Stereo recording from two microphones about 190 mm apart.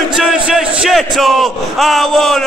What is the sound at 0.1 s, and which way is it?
Speech, 5° right (ahead or behind).